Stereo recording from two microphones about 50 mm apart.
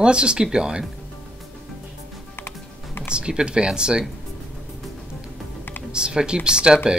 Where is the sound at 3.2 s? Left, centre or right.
Centre.